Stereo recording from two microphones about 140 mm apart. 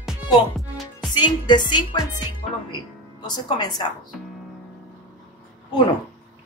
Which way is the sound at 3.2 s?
30° left (ahead or behind).